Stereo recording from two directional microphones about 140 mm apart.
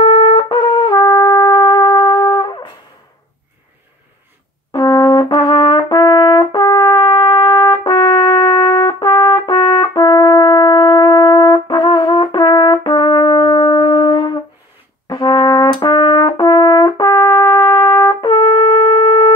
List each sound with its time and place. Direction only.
0.0 s trumpet: 35° left (ahead or behind)
4.7 s brass instrument: 25° left (ahead or behind)